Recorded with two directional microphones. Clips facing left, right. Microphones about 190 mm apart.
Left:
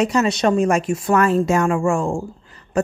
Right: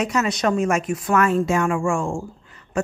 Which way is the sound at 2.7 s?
35° left (ahead or behind).